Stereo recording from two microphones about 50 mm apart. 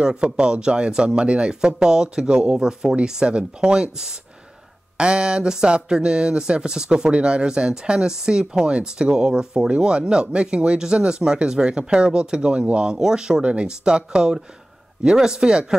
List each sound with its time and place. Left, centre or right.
0.0 s speech: centre